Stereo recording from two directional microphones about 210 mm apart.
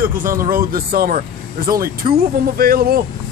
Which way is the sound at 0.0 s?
40° right (ahead or behind).